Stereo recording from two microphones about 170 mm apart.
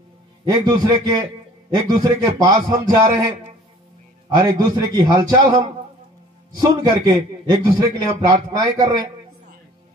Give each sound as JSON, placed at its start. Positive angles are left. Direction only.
{"t": 0.5, "sound": "a man's voice", "side_deg": -25}
{"t": 4.4, "sound": "a man's voice", "side_deg": -25}